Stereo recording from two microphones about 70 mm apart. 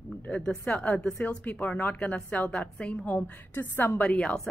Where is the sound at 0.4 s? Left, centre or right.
Centre.